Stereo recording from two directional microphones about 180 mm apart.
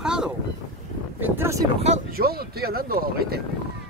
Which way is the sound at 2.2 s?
60° right (ahead or behind).